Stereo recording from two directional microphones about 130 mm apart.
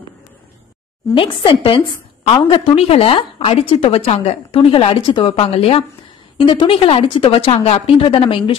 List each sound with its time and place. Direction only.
1.1 s a woman's voice: 40° left (ahead or behind)